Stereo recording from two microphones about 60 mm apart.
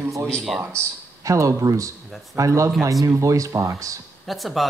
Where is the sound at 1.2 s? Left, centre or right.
Right.